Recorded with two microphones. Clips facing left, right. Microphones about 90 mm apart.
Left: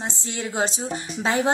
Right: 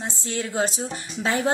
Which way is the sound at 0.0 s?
20° left (ahead or behind).